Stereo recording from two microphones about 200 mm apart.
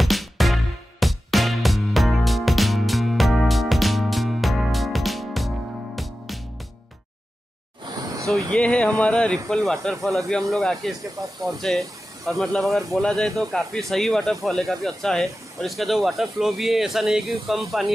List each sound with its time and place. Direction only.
0.0 s music: centre (ahead or behind)
8.5 s speech: 5° left (ahead or behind)
11.2 s speech: 20° right (ahead or behind)
11.6 s speech: centre (ahead or behind)